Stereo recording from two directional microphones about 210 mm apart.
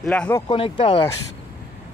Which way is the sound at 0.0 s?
5° left (ahead or behind).